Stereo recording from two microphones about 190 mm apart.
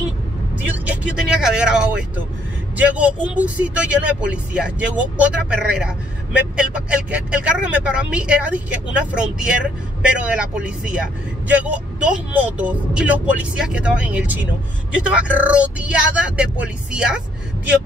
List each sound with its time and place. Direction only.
0.6 s speech: 5° right (ahead or behind)